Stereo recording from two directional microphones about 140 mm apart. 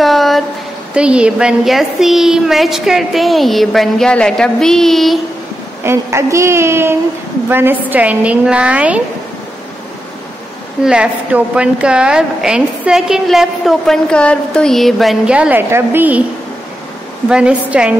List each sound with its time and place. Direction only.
0.0 s a sound: centre (ahead or behind)
0.9 s a woman's voice: 5° right (ahead or behind)
5.9 s a woman's voice: 20° right (ahead or behind)
10.8 s a woman's voice: 5° right (ahead or behind)
17.3 s a woman's voice: 10° right (ahead or behind)